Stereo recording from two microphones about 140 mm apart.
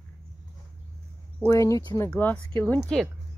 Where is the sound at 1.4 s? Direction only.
20° left (ahead or behind).